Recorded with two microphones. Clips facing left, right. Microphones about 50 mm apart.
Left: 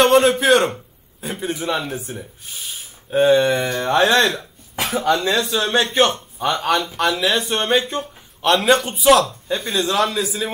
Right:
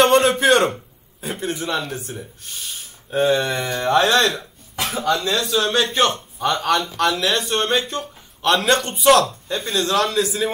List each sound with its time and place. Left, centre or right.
0.0 s a sound: centre
1.2 s speech: centre
4.7 s a man's voice: left; by 10.5 s centre